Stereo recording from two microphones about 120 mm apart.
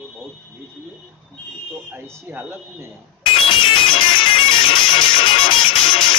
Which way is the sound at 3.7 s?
45° left (ahead or behind).